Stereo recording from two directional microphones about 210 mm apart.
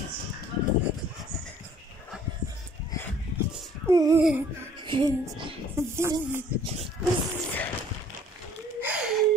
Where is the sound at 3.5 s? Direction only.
15° right (ahead or behind).